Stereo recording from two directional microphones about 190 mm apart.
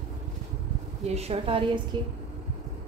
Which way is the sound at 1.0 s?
35° right (ahead or behind).